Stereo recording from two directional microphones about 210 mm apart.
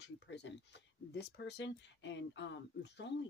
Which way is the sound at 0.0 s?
55° left (ahead or behind).